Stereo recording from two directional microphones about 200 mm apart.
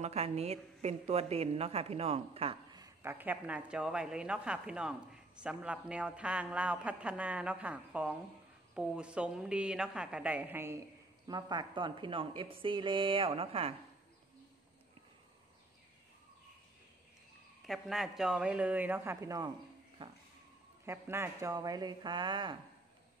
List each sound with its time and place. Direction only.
0.0 s speech: 30° right (ahead or behind)
2.8 s a woman's voice: 10° right (ahead or behind); by 13.7 s 30° right (ahead or behind)
17.6 s a man's voice: centre (ahead or behind); by 19.5 s 15° right (ahead or behind)
20.8 s a woman's voice: 15° right (ahead or behind)